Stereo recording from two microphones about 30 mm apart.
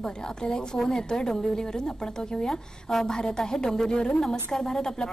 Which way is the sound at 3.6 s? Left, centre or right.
Centre.